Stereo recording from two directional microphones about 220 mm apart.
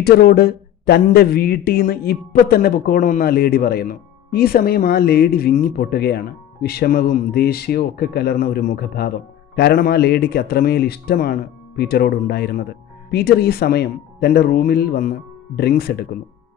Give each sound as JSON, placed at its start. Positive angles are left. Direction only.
{"t": 0.0, "sound": "speech", "side_deg": 45}